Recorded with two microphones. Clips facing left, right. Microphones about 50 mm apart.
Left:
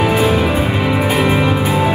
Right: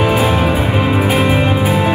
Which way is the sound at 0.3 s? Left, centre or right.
Right.